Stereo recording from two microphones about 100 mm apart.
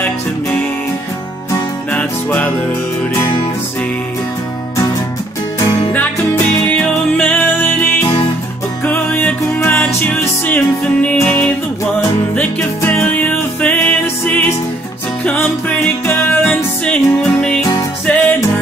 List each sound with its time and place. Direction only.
1.9 s music: 15° left (ahead or behind)
6.8 s music: 15° left (ahead or behind)
12.8 s music: 20° left (ahead or behind)
16.4 s music: 10° left (ahead or behind)